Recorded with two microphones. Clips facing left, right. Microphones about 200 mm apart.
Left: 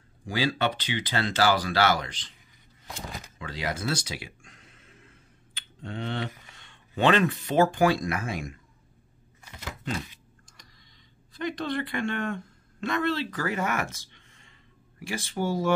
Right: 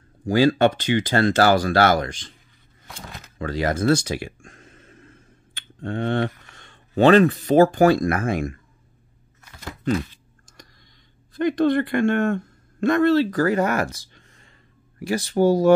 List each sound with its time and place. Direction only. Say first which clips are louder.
0.3 s speech: right 10 dB; 45° right (ahead or behind)
3.3 s a sound: right 11 dB; 45° right (ahead or behind)
5.8 s speech: right 9 dB; 50° right (ahead or behind)
11.3 s speech: right 11 dB; 50° right (ahead or behind)